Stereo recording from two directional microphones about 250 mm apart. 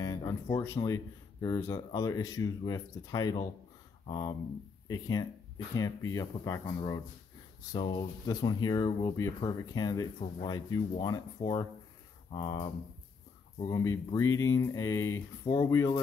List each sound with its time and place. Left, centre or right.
0.0 s speech: centre